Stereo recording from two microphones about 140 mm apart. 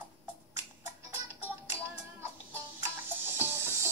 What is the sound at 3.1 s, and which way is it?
Music, 15° right (ahead or behind).